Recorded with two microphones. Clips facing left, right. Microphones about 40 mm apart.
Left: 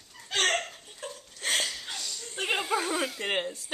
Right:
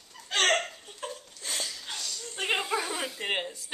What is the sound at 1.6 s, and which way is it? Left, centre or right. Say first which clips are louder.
Chuckle: left 2 dB; centre.